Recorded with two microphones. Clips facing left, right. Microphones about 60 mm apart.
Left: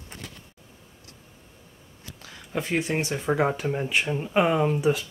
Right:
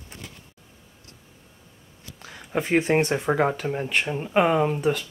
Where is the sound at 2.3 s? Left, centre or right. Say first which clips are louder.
Right 3 dB; centre.